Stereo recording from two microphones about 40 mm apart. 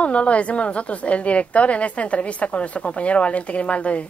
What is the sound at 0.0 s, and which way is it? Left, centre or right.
Speech, left.